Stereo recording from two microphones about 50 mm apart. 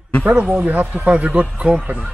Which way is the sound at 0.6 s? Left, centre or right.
Right.